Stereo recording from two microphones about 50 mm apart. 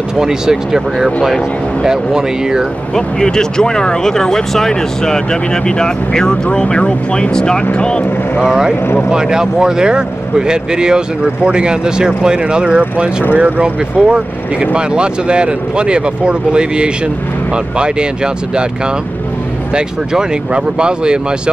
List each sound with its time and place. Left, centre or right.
0.2 s speech: centre
2.9 s speech: centre
8.4 s speech: centre
19.7 s speech: centre